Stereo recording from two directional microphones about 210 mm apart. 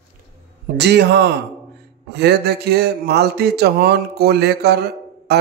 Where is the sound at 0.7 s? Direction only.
55° right (ahead or behind).